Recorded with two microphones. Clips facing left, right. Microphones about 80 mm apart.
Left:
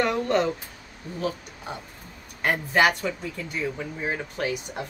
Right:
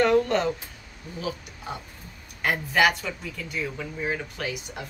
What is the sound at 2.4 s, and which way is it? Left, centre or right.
Speech, left.